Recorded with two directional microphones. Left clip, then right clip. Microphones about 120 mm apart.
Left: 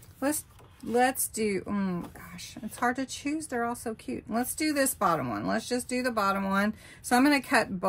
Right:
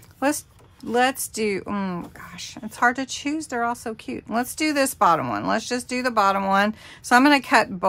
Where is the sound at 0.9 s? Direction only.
35° right (ahead or behind).